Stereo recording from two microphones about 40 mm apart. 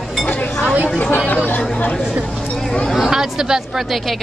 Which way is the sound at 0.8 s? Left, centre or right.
Left.